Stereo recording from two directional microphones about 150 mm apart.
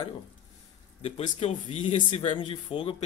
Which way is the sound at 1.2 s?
45° left (ahead or behind).